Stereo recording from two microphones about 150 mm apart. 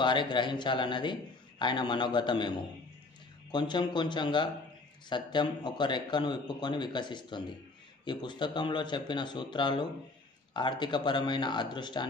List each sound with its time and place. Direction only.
0.0 s speech: 30° left (ahead or behind)